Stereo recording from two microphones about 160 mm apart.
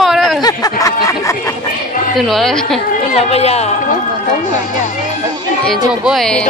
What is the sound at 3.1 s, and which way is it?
Speech, 40° left (ahead or behind).